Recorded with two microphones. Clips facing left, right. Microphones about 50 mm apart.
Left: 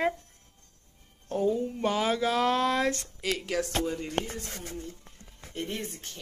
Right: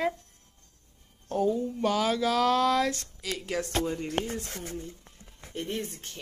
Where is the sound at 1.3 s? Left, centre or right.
Centre.